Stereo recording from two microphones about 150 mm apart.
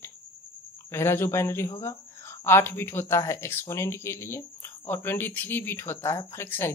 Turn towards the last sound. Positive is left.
turn(degrees=15)  # may be behind; listen again after turning